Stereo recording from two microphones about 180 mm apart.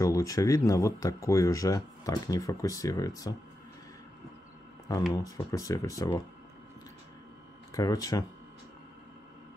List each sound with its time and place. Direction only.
0.0 s speech: 20° left (ahead or behind)
5.1 s speech: 20° left (ahead or behind)
7.7 s speech: 20° left (ahead or behind)